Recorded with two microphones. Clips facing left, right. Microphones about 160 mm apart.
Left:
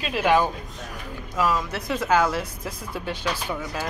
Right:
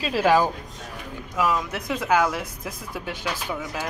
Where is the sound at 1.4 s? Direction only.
15° right (ahead or behind).